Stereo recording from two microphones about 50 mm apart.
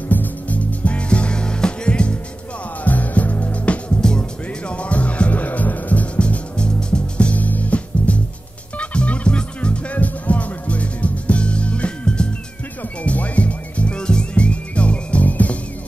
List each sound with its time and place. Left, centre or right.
0.1 s music: left
2.8 s music: left